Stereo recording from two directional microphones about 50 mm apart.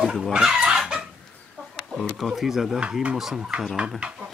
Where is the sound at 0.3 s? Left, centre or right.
Centre.